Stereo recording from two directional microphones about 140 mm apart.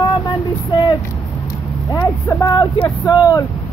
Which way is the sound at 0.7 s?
35° left (ahead or behind).